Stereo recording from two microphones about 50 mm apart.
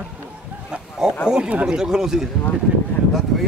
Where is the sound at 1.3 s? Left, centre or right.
Centre.